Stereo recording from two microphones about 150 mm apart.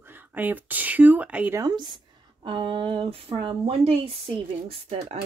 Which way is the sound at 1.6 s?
30° right (ahead or behind).